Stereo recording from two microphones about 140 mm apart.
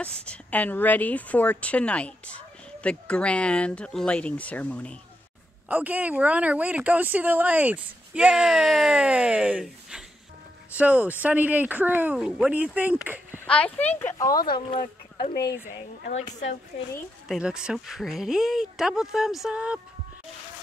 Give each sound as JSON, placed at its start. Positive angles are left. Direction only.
{"t": 0.0, "sound": "a woman's voice", "side_deg": 10}
{"t": 5.7, "sound": "a woman's voice", "side_deg": -10}
{"t": 13.5, "sound": "speech", "side_deg": 10}
{"t": 17.3, "sound": "speech", "side_deg": -5}